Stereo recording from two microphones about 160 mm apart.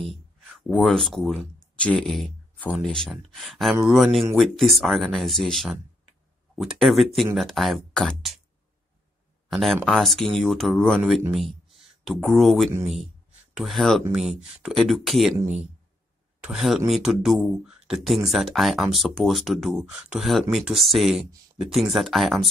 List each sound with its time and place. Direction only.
0.7 s speech: centre (ahead or behind)
9.5 s speech: centre (ahead or behind)
15.4 s speech: 45° right (ahead or behind)
16.4 s speech: centre (ahead or behind)